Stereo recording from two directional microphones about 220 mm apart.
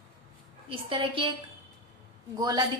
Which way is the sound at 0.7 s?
25° right (ahead or behind).